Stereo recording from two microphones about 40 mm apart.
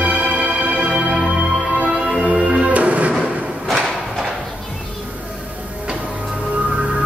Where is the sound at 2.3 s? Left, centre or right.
Right.